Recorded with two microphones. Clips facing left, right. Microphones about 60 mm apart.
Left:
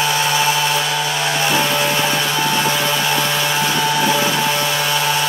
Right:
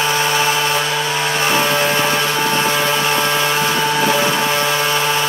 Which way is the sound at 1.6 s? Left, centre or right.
Centre.